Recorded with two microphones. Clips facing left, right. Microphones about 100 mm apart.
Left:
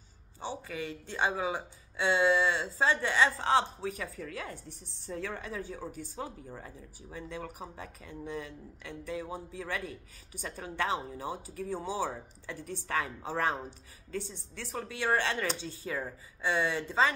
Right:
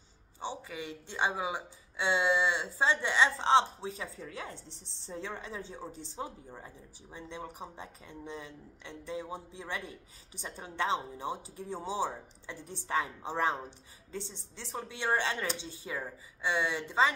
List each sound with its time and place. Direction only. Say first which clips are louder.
0.4 s speech: left 2 dB; 20° right (ahead or behind)